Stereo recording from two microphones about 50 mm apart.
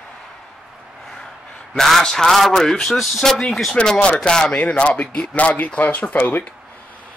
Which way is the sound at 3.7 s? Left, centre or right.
Centre.